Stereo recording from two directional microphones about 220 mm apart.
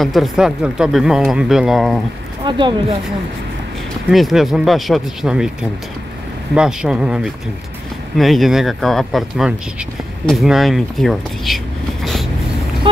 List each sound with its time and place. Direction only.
0.0 s speech: centre (ahead or behind)
2.4 s speech: 20° right (ahead or behind)
4.1 s speech: centre (ahead or behind)